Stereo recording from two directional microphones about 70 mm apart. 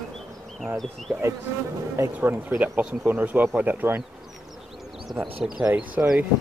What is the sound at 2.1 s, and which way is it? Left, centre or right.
Speech, right.